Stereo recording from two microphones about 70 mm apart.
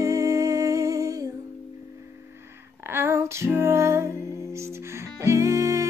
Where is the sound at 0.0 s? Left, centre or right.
Right.